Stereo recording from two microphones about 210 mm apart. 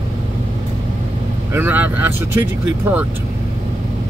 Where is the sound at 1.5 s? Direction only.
10° right (ahead or behind).